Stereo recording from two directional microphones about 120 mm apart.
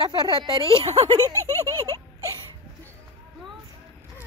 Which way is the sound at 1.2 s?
20° left (ahead or behind).